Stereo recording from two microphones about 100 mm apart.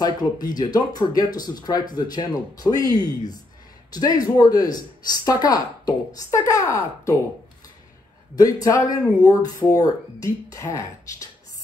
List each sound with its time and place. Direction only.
0.0 s speech: 40° left (ahead or behind)
8.4 s speech: 40° left (ahead or behind)